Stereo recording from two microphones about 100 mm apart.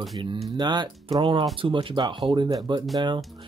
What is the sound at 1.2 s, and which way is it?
Speech, 60° right (ahead or behind).